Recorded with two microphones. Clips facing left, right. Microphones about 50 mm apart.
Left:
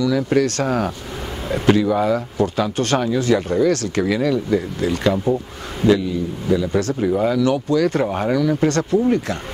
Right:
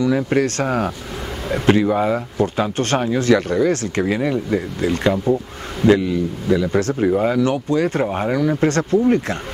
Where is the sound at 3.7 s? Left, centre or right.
Right.